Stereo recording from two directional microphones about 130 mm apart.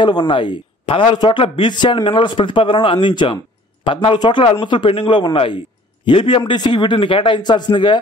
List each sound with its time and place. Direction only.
0.0 s speech: 40° left (ahead or behind)